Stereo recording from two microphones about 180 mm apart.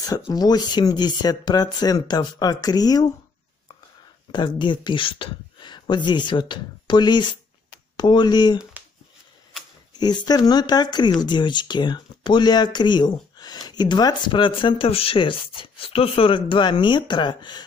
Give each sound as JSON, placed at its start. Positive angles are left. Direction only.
{"t": 0.3, "sound": "speech", "side_deg": 20}
{"t": 4.3, "sound": "speech", "side_deg": 25}
{"t": 9.9, "sound": "speech", "side_deg": 25}